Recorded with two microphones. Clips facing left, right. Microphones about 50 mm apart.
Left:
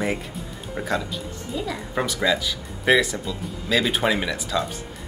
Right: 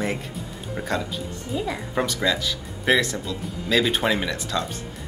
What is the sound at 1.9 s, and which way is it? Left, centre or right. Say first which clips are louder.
Speech: left 2 dB; centre.